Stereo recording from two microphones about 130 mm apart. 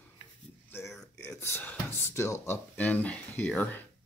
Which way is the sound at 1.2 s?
20° left (ahead or behind).